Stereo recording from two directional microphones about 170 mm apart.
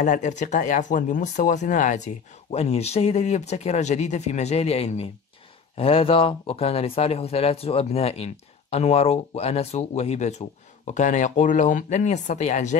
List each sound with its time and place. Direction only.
0.0 s speech: 45° left (ahead or behind)